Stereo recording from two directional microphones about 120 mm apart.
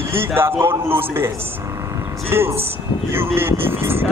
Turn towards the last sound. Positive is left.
turn(degrees=-20)  # may be behind; listen again after turning